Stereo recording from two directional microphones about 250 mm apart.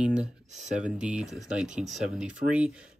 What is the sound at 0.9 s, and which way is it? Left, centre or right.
Speech, centre.